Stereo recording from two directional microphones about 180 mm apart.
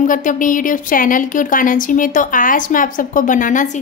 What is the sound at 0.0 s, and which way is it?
A woman's voice, 45° left (ahead or behind).